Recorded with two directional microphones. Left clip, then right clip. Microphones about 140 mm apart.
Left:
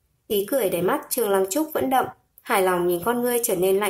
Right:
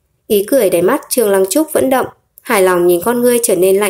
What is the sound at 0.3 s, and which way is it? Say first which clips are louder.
A woman's voice: right 11 dB; 20° right (ahead or behind).